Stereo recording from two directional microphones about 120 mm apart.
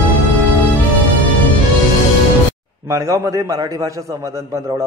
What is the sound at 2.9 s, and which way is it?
A man's voice, 25° right (ahead or behind).